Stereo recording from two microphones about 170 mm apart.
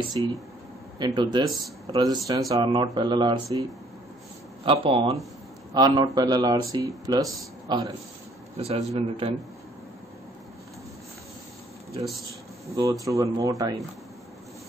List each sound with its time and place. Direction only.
0.2 s speech: 30° right (ahead or behind)
4.6 s a man's voice: 30° right (ahead or behind)
8.5 s speech: 35° right (ahead or behind)
13.0 s speech: 20° right (ahead or behind)